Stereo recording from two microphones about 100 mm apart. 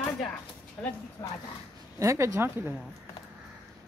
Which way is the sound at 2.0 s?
30° right (ahead or behind).